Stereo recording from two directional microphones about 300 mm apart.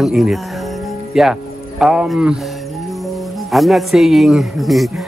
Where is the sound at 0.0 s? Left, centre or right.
Centre.